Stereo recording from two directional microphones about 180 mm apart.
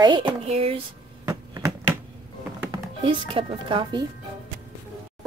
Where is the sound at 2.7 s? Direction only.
25° right (ahead or behind).